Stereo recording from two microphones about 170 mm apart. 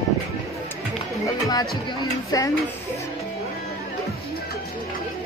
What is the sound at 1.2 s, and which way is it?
Speech, 20° left (ahead or behind).